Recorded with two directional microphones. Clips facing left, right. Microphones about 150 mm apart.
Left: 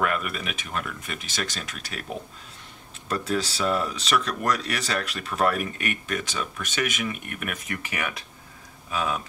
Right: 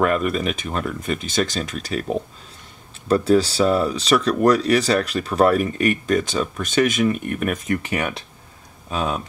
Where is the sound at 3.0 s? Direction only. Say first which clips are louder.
Right 11 dB; 35° right (ahead or behind).